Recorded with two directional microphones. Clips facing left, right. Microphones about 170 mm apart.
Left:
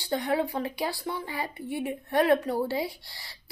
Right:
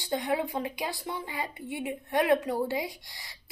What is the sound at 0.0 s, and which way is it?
A woman's voice, 20° right (ahead or behind).